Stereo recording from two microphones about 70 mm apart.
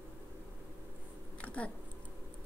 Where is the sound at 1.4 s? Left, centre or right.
Centre.